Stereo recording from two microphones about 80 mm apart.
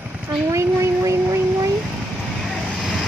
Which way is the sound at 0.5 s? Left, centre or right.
Right.